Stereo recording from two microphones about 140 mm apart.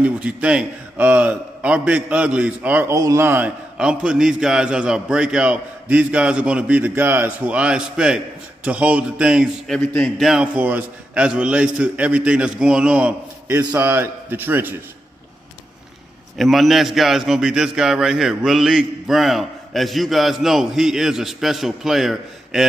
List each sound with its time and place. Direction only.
0.0 s a man's voice: 10° right (ahead or behind)
2.9 s a man's voice: 20° right (ahead or behind); by 9.5 s 5° right (ahead or behind)
9.7 s a man's voice: 5° left (ahead or behind); by 14.8 s 15° right (ahead or behind)
16.3 s a man's voice: centre (ahead or behind)